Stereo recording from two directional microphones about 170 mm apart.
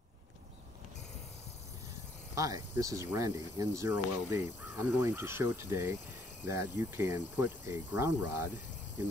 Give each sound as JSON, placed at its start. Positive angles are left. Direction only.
{"t": 2.3, "sound": "speech", "side_deg": -20}